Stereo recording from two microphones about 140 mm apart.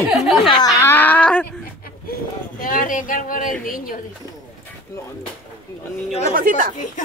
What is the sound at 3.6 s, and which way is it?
Speech, 90° left.